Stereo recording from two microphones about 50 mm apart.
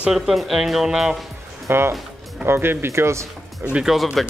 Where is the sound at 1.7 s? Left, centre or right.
Right.